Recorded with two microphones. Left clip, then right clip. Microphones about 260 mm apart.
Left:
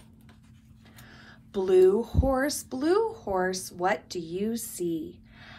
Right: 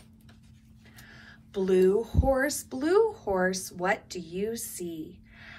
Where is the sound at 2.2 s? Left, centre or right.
Centre.